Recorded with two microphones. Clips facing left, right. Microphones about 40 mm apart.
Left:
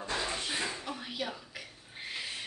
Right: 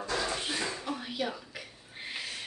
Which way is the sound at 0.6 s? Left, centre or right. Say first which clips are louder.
Right 1 dB; centre.